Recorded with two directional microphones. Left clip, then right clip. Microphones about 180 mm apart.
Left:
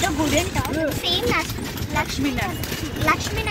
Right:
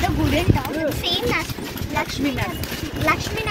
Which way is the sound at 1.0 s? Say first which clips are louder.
Left 1 dB; 10° left (ahead or behind).